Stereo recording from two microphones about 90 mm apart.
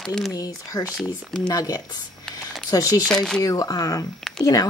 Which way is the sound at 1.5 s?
45° left (ahead or behind).